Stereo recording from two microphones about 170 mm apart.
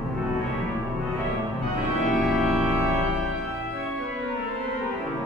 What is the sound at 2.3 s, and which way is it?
Organ, centre (ahead or behind).